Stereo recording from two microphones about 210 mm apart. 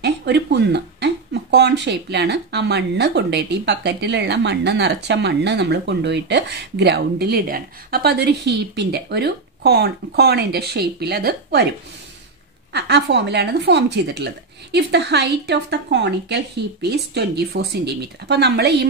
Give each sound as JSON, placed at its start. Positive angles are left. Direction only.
{"t": 0.0, "sound": "speech", "side_deg": -50}
{"t": 12.7, "sound": "speech", "side_deg": -50}